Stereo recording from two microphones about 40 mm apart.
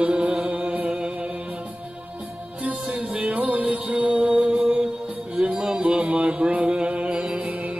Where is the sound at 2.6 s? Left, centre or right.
Right.